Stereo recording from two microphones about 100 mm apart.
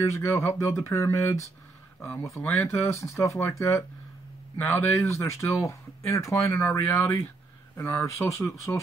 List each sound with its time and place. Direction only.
0.0 s speech: 30° left (ahead or behind)